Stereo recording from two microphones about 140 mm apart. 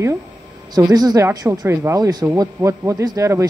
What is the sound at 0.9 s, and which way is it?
A man's voice, 25° right (ahead or behind).